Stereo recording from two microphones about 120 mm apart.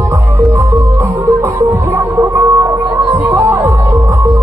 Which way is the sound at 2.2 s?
25° right (ahead or behind).